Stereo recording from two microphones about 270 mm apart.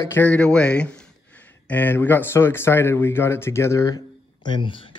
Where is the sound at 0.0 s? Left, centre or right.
Centre.